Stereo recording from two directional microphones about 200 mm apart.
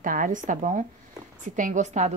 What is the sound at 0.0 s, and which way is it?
A woman's voice, 40° right (ahead or behind).